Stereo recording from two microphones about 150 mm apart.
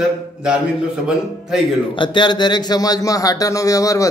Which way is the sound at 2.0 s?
30° left (ahead or behind).